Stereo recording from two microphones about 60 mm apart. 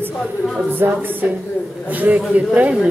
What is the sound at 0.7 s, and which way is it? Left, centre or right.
A woman's voice, right.